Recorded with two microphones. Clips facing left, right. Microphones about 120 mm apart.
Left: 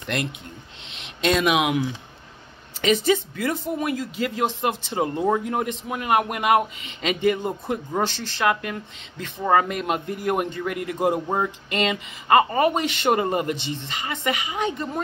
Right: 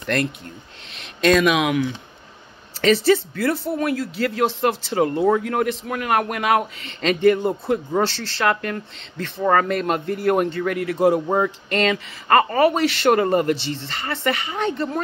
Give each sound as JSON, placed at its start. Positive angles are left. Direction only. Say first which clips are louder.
{"t": 0.0, "sound": "speech", "louder": "right 5 dB", "side_deg": 15}